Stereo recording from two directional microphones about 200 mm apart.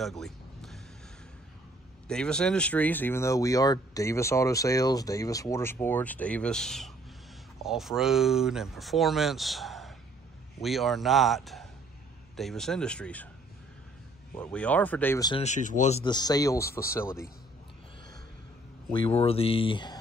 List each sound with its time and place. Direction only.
0.0 s a sound: centre (ahead or behind)
2.0 s speech: 5° left (ahead or behind)
14.3 s speech: 5° left (ahead or behind)
15.4 s speech: 40° left (ahead or behind)
16.0 s speech: 20° left (ahead or behind)
18.9 s speech: 30° left (ahead or behind)